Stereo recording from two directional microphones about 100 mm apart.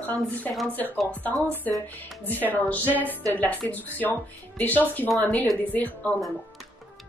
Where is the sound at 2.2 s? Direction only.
20° left (ahead or behind).